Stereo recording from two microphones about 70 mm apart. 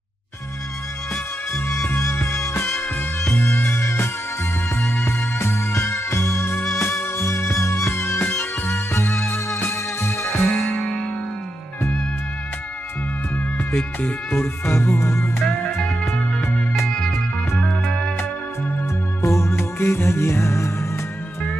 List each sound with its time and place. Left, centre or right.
1.9 s music: left
2.7 s music: centre
3.3 s music: left
10.5 s music: centre
13.7 s music: left
15.4 s music: centre
19.2 s music: left